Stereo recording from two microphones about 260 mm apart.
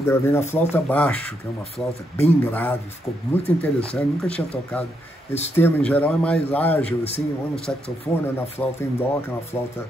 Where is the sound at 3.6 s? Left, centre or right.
Centre.